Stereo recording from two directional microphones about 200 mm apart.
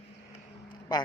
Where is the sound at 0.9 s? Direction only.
20° left (ahead or behind).